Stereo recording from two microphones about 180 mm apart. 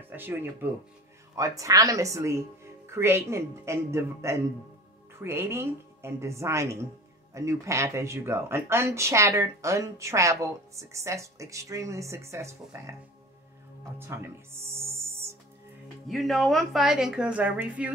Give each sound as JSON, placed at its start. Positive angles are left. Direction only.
{"t": 0.1, "sound": "speech", "side_deg": -10}
{"t": 13.9, "sound": "speech", "side_deg": -15}
{"t": 16.1, "sound": "a woman's voice", "side_deg": 0}